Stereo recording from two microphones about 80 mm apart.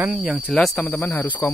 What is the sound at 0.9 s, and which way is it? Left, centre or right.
Speech, left.